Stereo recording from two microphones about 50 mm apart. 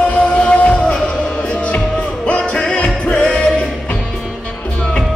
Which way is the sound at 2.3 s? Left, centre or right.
Centre.